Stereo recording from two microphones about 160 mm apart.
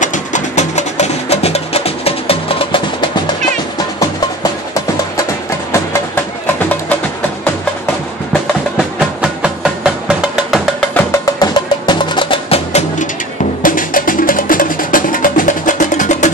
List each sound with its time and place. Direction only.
0.0 s music: 50° left (ahead or behind); by 3.1 s 35° left (ahead or behind)
8.7 s music: 5° right (ahead or behind)
11.0 s music: 20° left (ahead or behind); by 13.1 s 40° left (ahead or behind)
13.6 s music: 60° left (ahead or behind)